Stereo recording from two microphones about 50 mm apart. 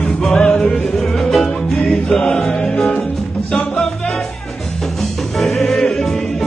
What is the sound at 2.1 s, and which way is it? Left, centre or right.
Music, left.